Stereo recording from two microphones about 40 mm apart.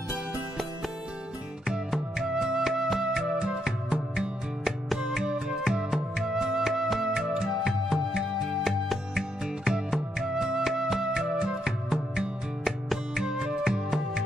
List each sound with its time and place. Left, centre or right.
1.7 s music: centre
5.6 s music: centre
11.3 s music: right
11.9 s music: centre